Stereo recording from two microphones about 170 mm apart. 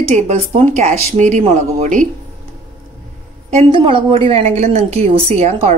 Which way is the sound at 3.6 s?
30° right (ahead or behind).